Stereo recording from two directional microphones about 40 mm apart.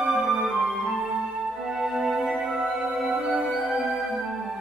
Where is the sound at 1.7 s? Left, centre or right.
Centre.